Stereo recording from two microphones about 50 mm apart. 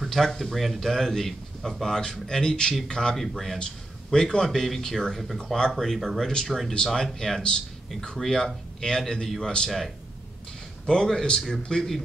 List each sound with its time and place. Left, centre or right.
0.1 s a man's voice: centre
3.2 s speech: centre
4.1 s a man's voice: centre
5.7 s a man's voice: centre
10.9 s a man's voice: centre